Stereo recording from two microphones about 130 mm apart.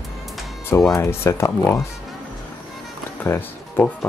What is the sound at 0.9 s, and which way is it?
Speech, 20° left (ahead or behind).